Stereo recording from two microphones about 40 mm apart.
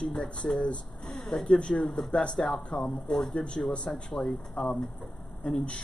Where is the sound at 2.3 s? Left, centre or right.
Centre.